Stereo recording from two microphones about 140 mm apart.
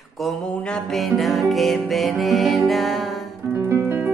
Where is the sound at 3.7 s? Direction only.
15° right (ahead or behind).